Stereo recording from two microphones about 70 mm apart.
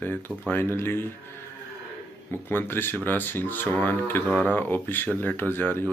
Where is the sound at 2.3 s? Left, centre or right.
Left.